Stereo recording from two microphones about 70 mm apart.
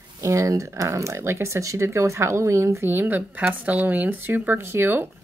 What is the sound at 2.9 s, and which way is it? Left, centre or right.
Speech, right.